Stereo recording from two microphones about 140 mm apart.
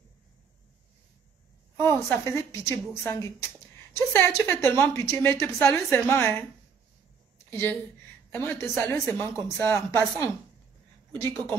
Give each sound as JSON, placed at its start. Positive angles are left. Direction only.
{"t": 1.8, "sound": "a woman's voice", "side_deg": 15}
{"t": 7.4, "sound": "a woman's voice", "side_deg": 15}